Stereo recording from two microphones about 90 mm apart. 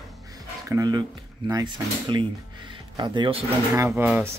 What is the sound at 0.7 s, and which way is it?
Speech, 35° right (ahead or behind).